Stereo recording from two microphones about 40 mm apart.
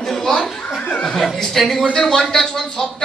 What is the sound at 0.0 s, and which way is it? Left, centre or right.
Chuckle, centre.